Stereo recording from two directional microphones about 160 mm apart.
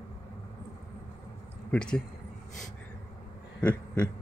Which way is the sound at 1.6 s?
5° left (ahead or behind).